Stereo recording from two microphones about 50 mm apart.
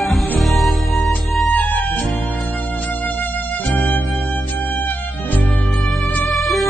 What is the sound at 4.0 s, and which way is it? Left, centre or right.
Music, centre.